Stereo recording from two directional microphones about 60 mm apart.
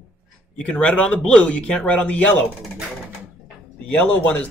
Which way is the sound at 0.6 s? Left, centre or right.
Centre.